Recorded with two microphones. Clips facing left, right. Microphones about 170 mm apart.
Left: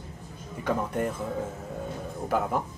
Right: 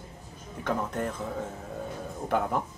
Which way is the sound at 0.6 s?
10° left (ahead or behind).